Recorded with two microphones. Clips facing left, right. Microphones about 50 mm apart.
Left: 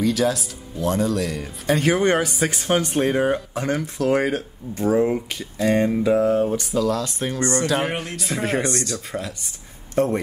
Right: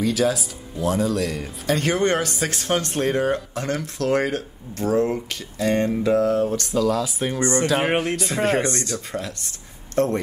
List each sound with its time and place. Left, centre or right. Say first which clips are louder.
0.0 s speech: even; centre
7.3 s speech: right 1 dB; right
7.6 s speech: right 2 dB; centre
8.7 s speech: left 1 dB; right
9.1 s speech: even; centre